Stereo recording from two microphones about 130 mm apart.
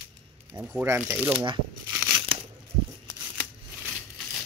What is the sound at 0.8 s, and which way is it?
Speech, 15° right (ahead or behind).